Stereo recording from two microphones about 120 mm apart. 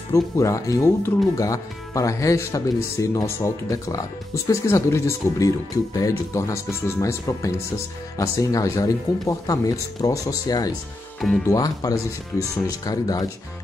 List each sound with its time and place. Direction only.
0.1 s speech: 25° left (ahead or behind)
11.1 s speech: 5° left (ahead or behind)
11.4 s speech: 30° left (ahead or behind)